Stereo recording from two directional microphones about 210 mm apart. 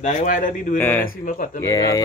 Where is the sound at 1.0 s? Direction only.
40° left (ahead or behind).